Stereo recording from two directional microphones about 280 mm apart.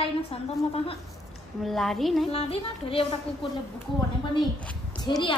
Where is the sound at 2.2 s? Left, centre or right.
Left.